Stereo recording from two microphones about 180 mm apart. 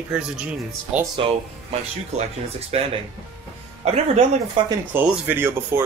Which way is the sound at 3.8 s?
35° right (ahead or behind).